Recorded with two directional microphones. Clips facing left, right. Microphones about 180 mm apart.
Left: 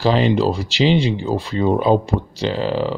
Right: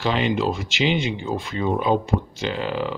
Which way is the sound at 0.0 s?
35° left (ahead or behind).